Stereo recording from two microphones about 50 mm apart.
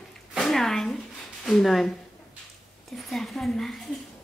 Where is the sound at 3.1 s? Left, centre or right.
Centre.